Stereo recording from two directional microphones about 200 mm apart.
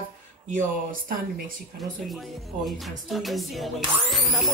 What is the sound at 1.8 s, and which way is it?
Speech, centre (ahead or behind).